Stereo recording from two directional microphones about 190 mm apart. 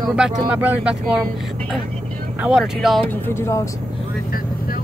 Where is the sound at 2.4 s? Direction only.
5° right (ahead or behind).